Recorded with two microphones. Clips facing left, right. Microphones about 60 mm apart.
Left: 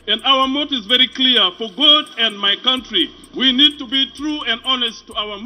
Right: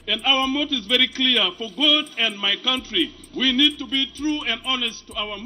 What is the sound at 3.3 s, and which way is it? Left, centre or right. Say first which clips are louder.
Speech: left 4 dB; left.